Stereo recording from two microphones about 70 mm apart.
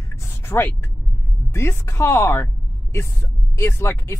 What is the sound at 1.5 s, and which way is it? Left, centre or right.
Speech, left.